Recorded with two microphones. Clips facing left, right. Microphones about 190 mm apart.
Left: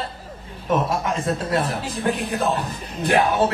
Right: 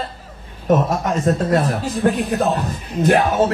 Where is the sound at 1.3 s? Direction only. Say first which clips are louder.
Right 7 dB; 45° right (ahead or behind).